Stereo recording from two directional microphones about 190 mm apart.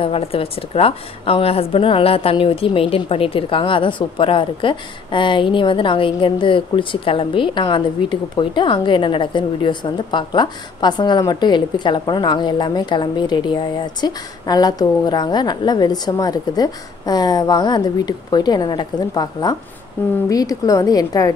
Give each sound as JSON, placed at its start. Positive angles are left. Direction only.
{"t": 0.0, "sound": "a woman's voice", "side_deg": 30}